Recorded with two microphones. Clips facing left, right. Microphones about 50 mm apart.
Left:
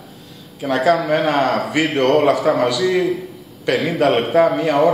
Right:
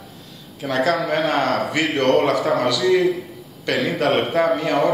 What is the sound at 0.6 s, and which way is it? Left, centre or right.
Speech, centre.